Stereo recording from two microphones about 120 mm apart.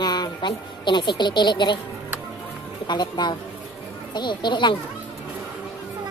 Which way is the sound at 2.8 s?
35° left (ahead or behind).